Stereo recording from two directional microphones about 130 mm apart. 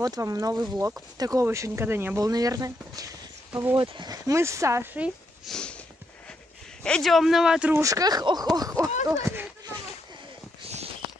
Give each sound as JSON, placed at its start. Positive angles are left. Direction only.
{"t": 0.0, "sound": "speech", "side_deg": -25}
{"t": 2.2, "sound": "speech", "side_deg": -30}
{"t": 3.7, "sound": "speech", "side_deg": -40}
{"t": 5.5, "sound": "sniff", "side_deg": 5}
{"t": 6.8, "sound": "speech", "side_deg": 5}
{"t": 7.8, "sound": "speech", "side_deg": -30}
{"t": 9.0, "sound": "a sound", "side_deg": -25}